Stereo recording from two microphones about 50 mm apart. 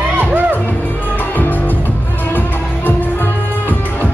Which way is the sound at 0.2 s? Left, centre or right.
Right.